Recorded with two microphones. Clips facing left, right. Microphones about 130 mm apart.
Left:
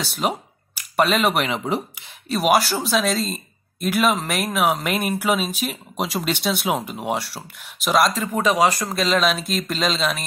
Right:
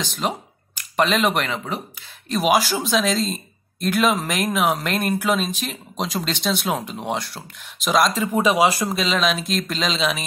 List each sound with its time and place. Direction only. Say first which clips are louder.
0.0 s speech: left 1 dB; 10° left (ahead or behind)
1.6 s speech: left 5 dB; 25° left (ahead or behind)
2.2 s speech: left 1 dB; 5° left (ahead or behind)